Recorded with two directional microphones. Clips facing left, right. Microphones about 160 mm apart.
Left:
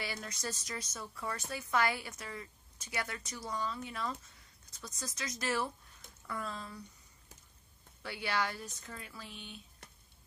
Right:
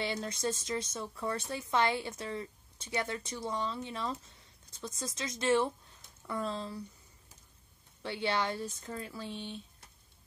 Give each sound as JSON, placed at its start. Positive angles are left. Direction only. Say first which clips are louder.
{"t": 0.0, "sound": "a woman's voice", "louder": "right 7 dB", "side_deg": -25}
{"t": 8.0, "sound": "a woman's voice", "louder": "right 3 dB", "side_deg": -25}